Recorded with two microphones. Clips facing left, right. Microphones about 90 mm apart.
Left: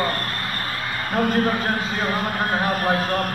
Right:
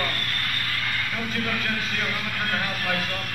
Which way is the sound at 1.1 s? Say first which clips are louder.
Left 13 dB; 45° left (ahead or behind).